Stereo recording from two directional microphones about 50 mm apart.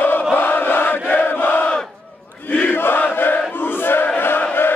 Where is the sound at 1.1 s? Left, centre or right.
Left.